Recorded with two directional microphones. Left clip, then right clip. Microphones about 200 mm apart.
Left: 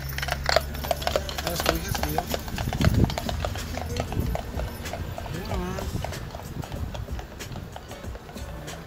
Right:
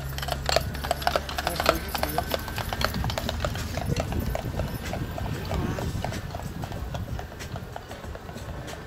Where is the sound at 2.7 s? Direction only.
50° right (ahead or behind).